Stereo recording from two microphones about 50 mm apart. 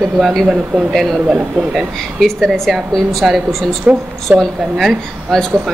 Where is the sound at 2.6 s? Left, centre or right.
Centre.